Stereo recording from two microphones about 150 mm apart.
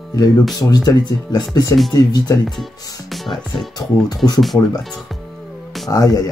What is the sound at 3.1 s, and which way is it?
Speech, centre (ahead or behind).